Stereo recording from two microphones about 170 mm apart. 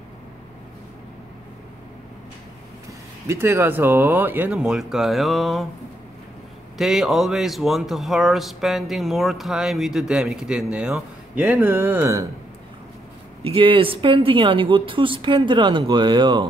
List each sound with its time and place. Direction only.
3.3 s speech: 15° right (ahead or behind)
6.8 s speech: centre (ahead or behind)
13.4 s speech: 35° right (ahead or behind)